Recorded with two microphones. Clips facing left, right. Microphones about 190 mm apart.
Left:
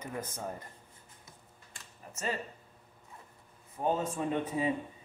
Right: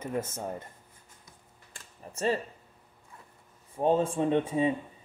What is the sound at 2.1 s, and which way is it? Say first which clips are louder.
Speech: right 8 dB; 35° right (ahead or behind).